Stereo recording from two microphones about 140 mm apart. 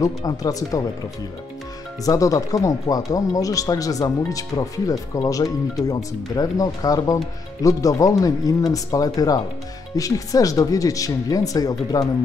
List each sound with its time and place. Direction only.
0.0 s speech: 25° left (ahead or behind)
2.0 s speech: 25° left (ahead or behind)